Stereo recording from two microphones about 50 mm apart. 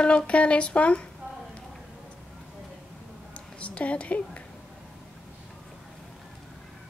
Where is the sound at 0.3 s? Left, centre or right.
Left.